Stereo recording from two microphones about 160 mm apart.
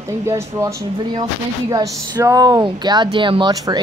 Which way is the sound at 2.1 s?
25° right (ahead or behind).